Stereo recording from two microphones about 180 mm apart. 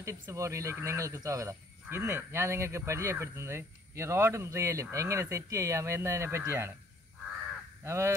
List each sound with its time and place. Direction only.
0.0 s speech: 15° right (ahead or behind)
7.8 s speech: 15° right (ahead or behind)